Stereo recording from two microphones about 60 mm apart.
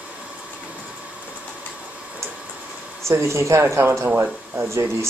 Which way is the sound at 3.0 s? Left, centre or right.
Right.